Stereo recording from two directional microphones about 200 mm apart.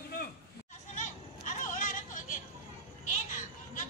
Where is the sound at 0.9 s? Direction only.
40° left (ahead or behind).